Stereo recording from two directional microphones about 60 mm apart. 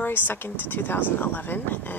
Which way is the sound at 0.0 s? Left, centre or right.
Left.